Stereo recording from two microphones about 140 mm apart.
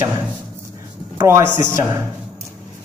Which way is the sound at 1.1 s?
20° right (ahead or behind).